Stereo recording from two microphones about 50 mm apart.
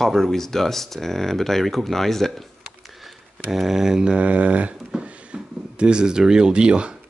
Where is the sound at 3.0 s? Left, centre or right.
Centre.